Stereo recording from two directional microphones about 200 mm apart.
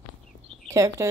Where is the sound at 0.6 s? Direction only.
15° right (ahead or behind).